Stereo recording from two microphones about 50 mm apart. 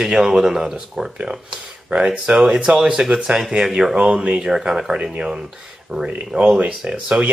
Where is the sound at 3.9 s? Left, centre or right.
Centre.